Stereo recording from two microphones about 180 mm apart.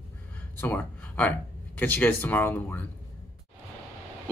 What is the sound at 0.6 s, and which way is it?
Speech, 10° left (ahead or behind).